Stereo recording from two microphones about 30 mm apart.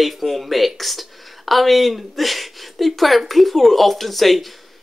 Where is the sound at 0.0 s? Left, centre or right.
Centre.